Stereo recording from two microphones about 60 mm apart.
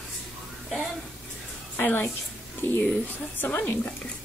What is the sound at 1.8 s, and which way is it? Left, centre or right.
Speech, left.